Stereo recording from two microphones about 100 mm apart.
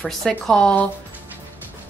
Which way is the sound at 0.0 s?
5° left (ahead or behind).